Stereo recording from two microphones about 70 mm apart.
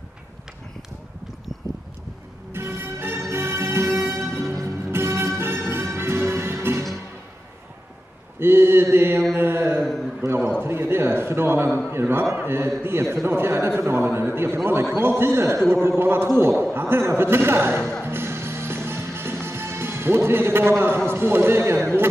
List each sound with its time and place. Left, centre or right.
2.5 s music: right
8.4 s mantra: right
9.8 s a sound: centre
10.6 s a man's voice: right
18.0 s music: right
19.4 s a man's voice: right